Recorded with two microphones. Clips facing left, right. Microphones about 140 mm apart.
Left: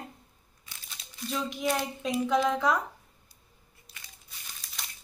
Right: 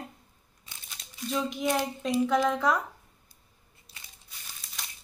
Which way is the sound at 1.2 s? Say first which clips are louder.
Right 2 dB; centre (ahead or behind).